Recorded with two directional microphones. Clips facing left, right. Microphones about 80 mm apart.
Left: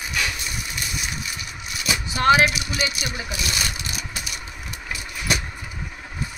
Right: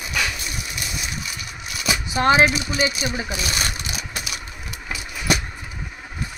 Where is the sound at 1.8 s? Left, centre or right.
Right.